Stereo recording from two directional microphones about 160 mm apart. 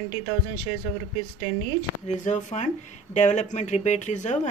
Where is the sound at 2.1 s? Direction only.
50° left (ahead or behind).